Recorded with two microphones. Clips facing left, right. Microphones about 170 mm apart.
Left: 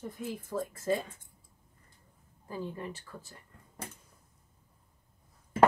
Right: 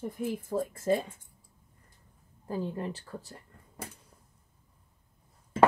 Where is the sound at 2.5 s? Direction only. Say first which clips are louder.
Right 5 dB; 35° right (ahead or behind).